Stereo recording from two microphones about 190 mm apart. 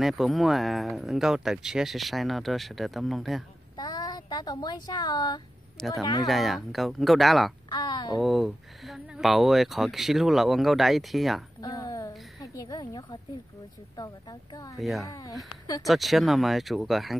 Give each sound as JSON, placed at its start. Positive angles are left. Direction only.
{"t": 0.0, "sound": "speech", "side_deg": 0}
{"t": 3.7, "sound": "speech", "side_deg": 20}
{"t": 5.8, "sound": "speech", "side_deg": 0}
{"t": 7.7, "sound": "a woman's voice", "side_deg": 20}
{"t": 8.2, "sound": "speech", "side_deg": 0}
{"t": 11.6, "sound": "a sound", "side_deg": 20}
{"t": 12.4, "sound": "a woman's voice", "side_deg": 20}
{"t": 14.8, "sound": "speech", "side_deg": 0}
{"t": 15.0, "sound": "a woman's voice", "side_deg": 20}
{"t": 15.9, "sound": "speech", "side_deg": 0}